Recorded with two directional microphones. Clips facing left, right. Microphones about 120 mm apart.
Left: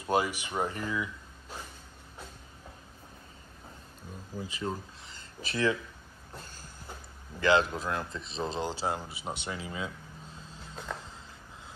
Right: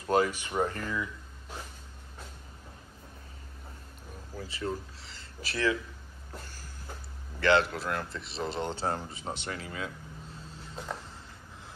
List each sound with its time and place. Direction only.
0.0 s speech: 15° left (ahead or behind)
4.4 s speech: 15° left (ahead or behind)
7.3 s speech: 15° left (ahead or behind)
8.6 s speech: 5° left (ahead or behind)